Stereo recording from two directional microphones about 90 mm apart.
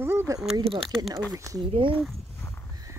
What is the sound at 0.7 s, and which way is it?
Speech, 5° left (ahead or behind).